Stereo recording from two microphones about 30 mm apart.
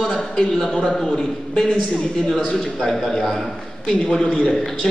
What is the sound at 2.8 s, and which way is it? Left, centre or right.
A man's voice, centre.